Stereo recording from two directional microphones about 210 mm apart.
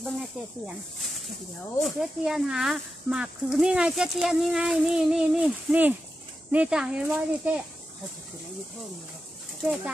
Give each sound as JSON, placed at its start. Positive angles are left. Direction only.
{"t": 0.0, "sound": "speech", "side_deg": 0}
{"t": 1.8, "sound": "speech", "side_deg": 0}